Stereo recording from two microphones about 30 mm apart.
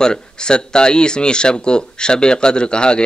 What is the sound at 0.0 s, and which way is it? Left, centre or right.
Speech, left.